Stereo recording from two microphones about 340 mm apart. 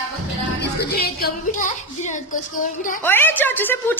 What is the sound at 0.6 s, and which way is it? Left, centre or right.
Speech, left.